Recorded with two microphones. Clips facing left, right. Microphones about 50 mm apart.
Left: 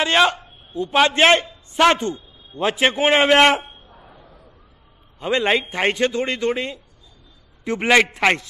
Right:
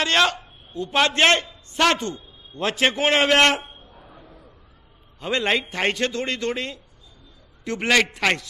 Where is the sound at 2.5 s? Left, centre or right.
Centre.